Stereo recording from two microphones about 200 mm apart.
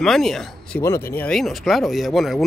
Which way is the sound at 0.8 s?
15° left (ahead or behind).